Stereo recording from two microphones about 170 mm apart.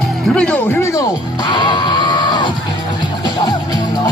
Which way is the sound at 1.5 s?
25° left (ahead or behind).